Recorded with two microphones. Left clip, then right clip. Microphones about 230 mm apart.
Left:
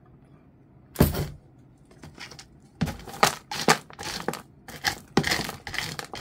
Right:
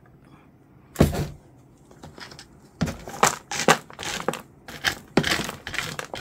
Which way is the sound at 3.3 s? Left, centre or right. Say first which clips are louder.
Right 3 dB; centre.